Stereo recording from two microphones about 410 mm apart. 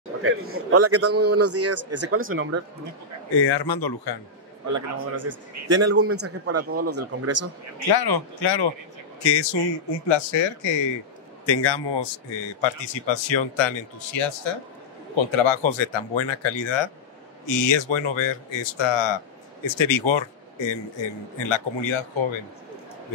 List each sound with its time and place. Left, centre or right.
0.2 s a man's voice: right
3.3 s speech: left
4.6 s a man's voice: right
7.9 s speech: left
11.4 s a man's voice: left